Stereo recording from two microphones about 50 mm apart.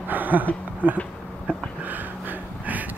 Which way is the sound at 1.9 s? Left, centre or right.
Right.